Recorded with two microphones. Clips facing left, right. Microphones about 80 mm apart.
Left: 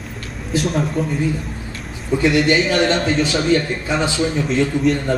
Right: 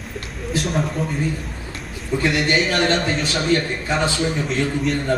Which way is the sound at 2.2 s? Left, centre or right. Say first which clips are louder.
Left 4 dB; centre.